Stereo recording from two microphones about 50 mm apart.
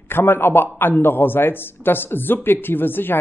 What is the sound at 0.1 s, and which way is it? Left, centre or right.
A man's voice, left.